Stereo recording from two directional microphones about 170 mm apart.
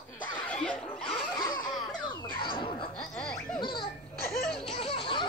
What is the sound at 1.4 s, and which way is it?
Baby laughter, 25° left (ahead or behind).